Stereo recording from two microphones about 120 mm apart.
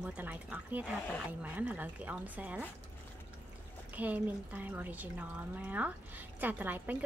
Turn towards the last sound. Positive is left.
turn(degrees=-15)  # may be behind; listen again after turning